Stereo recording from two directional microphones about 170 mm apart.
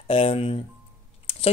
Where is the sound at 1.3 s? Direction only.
35° left (ahead or behind).